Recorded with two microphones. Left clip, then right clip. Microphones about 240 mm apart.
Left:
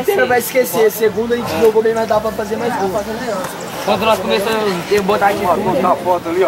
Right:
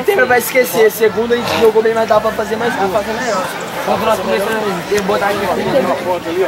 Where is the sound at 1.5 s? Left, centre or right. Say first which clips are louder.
Right 1 dB; centre.